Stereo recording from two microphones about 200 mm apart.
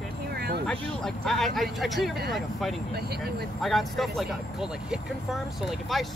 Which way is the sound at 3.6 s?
Centre (ahead or behind).